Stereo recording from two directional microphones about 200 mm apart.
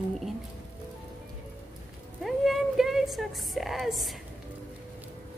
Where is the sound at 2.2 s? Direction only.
Centre (ahead or behind).